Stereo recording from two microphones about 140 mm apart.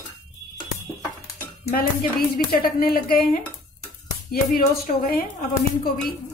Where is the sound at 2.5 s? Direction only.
90° left.